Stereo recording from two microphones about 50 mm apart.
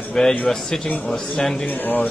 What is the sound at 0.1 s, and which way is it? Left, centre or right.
Speech, centre.